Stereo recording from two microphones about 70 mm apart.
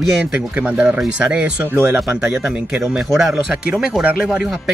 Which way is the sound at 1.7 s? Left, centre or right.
Right.